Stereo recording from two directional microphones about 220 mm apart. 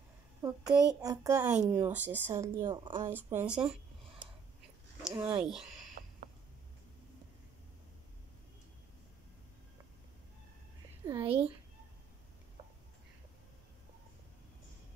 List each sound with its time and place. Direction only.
0.4 s a child's voice: 15° right (ahead or behind)
3.1 s speech: 10° right (ahead or behind)
5.1 s speech: 20° right (ahead or behind)
5.4 s speech: centre (ahead or behind)
11.1 s speech: 25° right (ahead or behind)